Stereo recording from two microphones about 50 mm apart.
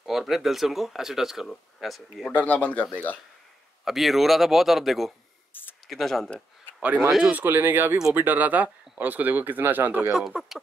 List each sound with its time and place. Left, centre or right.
0.0 s speech: centre
2.2 s speech: left
3.8 s speech: centre
5.5 s a sound: left
5.9 s speech: centre
7.4 s speech: right
10.1 s speech: centre